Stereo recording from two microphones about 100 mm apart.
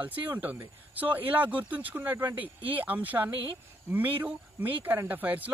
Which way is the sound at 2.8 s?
15° right (ahead or behind).